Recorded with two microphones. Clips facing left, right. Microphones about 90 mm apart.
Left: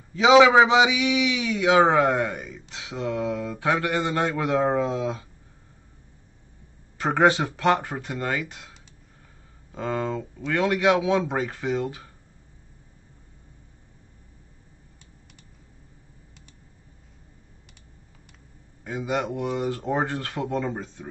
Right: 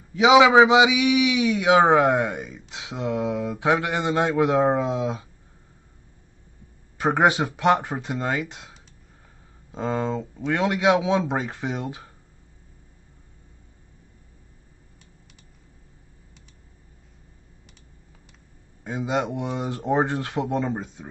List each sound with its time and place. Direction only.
0.1 s a man's voice: 15° right (ahead or behind)
7.2 s speech: 15° right (ahead or behind)
18.9 s speech: 20° right (ahead or behind)